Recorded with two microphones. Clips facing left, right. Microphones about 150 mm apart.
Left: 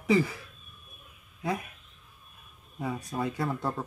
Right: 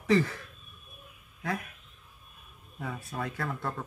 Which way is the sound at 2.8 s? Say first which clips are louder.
Left 4 dB; 20° left (ahead or behind).